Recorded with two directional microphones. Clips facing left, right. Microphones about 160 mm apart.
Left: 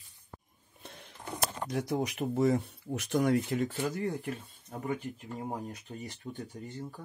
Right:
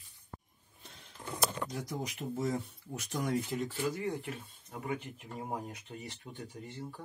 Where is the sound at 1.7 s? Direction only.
70° left (ahead or behind).